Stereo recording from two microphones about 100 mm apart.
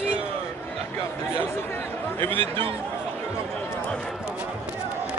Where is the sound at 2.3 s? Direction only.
60° right (ahead or behind).